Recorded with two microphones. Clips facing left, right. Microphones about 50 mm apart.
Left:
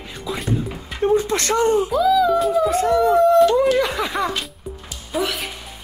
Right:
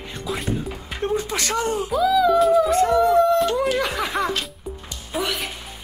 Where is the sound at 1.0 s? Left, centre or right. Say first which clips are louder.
Left 6 dB; left.